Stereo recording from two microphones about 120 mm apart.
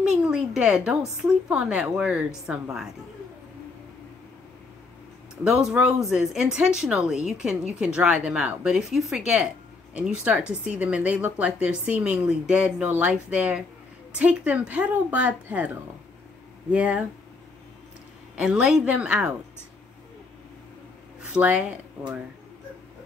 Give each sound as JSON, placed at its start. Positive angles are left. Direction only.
{"t": 0.2, "sound": "speech", "side_deg": -5}
{"t": 5.4, "sound": "speech", "side_deg": -5}
{"t": 18.3, "sound": "speech", "side_deg": -10}
{"t": 21.3, "sound": "speech", "side_deg": -10}